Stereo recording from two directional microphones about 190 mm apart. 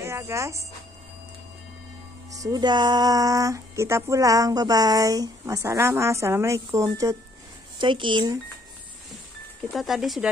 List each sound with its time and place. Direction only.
0.0 s speech: 15° right (ahead or behind)
2.3 s speech: 20° right (ahead or behind)
9.7 s speech: centre (ahead or behind)